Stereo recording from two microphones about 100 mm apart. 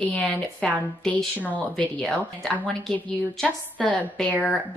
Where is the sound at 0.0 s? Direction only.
10° left (ahead or behind).